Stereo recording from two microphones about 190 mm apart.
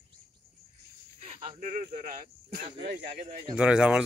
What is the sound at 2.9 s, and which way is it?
Speech, 55° right (ahead or behind).